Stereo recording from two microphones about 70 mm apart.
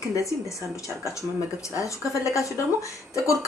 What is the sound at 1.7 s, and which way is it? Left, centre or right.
Speech, left.